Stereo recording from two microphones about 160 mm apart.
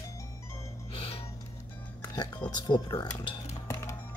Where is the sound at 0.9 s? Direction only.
35° left (ahead or behind).